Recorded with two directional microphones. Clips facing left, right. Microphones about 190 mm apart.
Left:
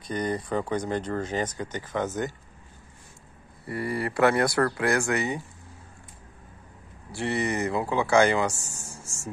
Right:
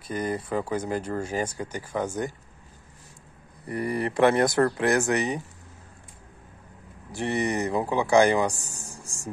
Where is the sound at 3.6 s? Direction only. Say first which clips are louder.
Right 2 dB; 20° right (ahead or behind).